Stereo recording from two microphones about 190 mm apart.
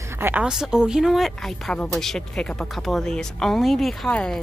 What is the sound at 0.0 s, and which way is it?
A woman's voice, 10° right (ahead or behind).